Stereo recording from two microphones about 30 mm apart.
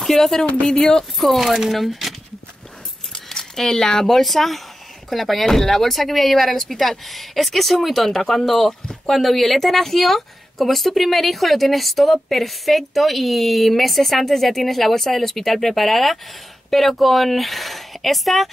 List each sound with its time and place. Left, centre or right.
0.0 s speech: centre
1.1 s speech: centre
3.3 s speech: centre